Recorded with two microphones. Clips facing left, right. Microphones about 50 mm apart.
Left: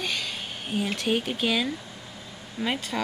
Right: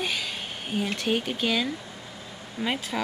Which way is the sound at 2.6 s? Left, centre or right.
Centre.